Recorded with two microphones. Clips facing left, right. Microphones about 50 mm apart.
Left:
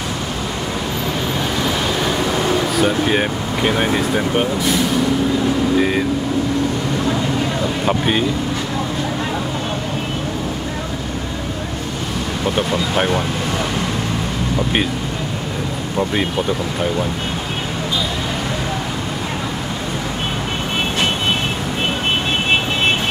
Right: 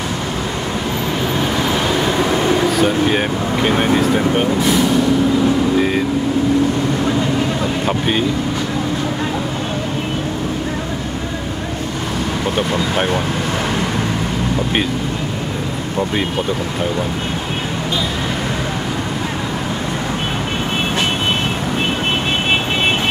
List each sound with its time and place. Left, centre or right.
2.0 s train: centre
2.8 s speech: centre
5.8 s vehicle: centre
7.8 s speech: centre
12.5 s speech: centre